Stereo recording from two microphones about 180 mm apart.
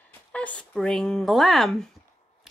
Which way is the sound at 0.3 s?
5° left (ahead or behind).